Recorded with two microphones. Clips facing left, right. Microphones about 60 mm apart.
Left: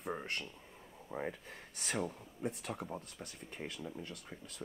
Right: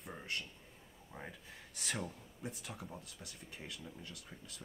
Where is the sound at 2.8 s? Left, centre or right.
Left.